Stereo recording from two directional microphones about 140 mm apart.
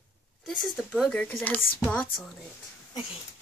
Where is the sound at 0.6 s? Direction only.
Centre (ahead or behind).